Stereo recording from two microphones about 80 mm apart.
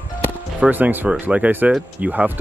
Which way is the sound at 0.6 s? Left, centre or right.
Right.